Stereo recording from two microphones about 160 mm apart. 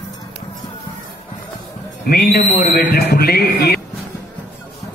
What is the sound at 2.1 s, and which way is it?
A man's voice, 70° left (ahead or behind).